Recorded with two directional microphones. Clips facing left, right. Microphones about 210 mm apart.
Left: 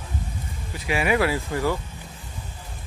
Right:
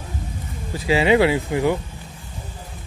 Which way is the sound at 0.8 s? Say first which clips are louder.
Right 6 dB; 25° right (ahead or behind).